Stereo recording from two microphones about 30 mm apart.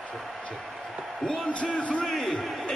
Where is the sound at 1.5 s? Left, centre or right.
Left.